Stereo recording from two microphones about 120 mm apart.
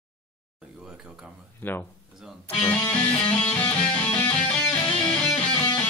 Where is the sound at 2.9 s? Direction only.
15° left (ahead or behind).